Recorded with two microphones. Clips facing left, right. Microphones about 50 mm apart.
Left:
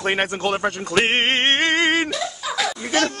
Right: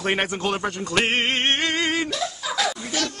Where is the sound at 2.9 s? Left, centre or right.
Left.